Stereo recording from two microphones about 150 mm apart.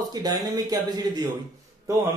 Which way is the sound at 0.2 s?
25° right (ahead or behind).